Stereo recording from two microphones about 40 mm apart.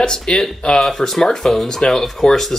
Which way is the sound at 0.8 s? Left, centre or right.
Centre.